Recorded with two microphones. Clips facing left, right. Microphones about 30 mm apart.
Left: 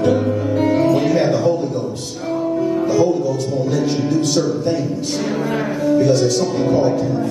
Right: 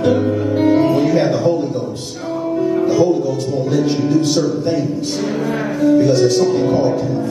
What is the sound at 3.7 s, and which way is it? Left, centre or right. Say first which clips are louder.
Speech: right 4 dB; centre.